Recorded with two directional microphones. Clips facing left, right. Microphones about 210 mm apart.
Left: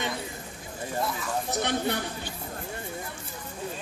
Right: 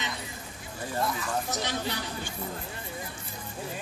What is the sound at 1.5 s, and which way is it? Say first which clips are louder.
Speech: left 4 dB; 55° left (ahead or behind).